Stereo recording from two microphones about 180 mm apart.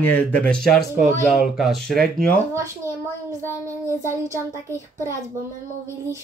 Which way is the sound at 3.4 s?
15° right (ahead or behind).